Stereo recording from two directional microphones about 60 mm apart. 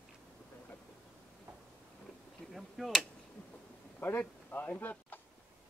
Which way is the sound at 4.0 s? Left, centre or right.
Left.